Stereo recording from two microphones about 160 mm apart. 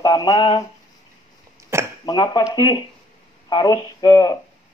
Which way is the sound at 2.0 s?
25° left (ahead or behind).